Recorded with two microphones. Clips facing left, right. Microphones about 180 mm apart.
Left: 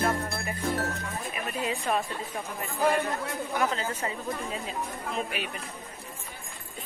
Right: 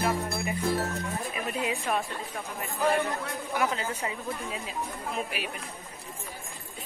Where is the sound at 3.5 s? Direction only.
10° right (ahead or behind).